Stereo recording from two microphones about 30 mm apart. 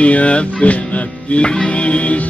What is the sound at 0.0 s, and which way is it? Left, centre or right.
Speech, left.